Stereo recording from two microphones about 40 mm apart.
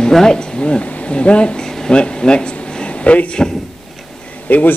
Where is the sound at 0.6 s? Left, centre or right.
Left.